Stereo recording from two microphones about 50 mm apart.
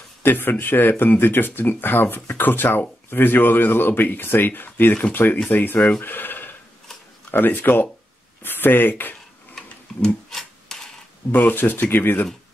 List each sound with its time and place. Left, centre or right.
0.2 s speech: left
9.9 s rub: centre
10.3 s a sound: centre
11.3 s speech: left